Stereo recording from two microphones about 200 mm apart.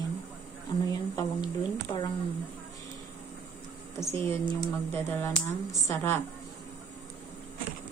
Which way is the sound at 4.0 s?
10° left (ahead or behind).